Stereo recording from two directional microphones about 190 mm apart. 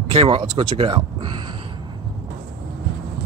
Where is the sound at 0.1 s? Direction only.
25° right (ahead or behind).